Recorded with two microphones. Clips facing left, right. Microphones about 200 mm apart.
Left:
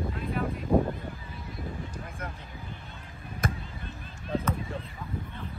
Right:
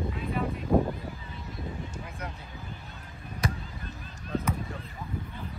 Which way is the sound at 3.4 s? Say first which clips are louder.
Even; 50° left (ahead or behind).